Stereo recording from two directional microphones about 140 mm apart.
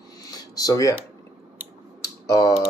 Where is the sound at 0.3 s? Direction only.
25° left (ahead or behind).